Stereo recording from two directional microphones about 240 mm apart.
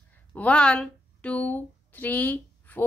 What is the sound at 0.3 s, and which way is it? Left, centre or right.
A woman's voice, centre.